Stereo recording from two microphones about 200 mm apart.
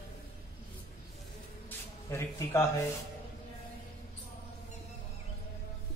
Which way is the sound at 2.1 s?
15° left (ahead or behind).